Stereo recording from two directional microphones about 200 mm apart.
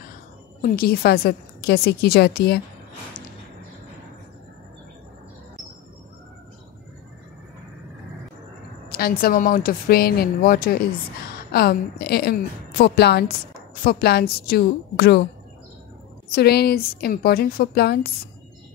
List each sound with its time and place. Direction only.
0.6 s a woman's voice: 50° left (ahead or behind)
8.9 s a woman's voice: 50° left (ahead or behind)
16.3 s a woman's voice: 55° left (ahead or behind)